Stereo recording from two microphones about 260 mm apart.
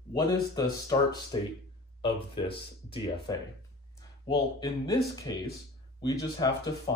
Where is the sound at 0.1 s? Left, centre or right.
Centre.